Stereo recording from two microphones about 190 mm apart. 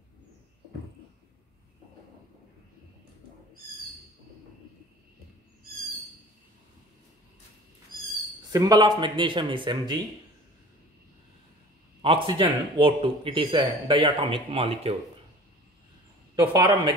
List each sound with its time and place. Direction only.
8.5 s speech: 20° right (ahead or behind)
12.0 s speech: 30° right (ahead or behind)
16.3 s speech: 20° right (ahead or behind)